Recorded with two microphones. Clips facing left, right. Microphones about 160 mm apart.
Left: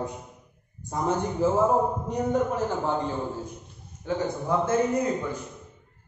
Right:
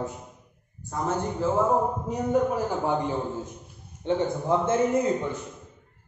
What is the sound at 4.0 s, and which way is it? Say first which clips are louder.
A man's voice: right 3 dB; 25° right (ahead or behind).